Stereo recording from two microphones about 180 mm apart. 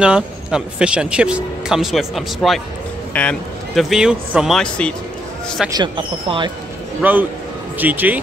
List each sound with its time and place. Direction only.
0.0 s speech: 5° right (ahead or behind)
5.7 s speech: 25° right (ahead or behind)
7.0 s speech: 10° right (ahead or behind)